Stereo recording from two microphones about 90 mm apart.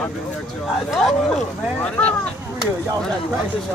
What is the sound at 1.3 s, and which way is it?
Speech, 15° left (ahead or behind).